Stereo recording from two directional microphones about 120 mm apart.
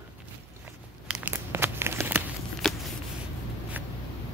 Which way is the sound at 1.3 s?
20° right (ahead or behind).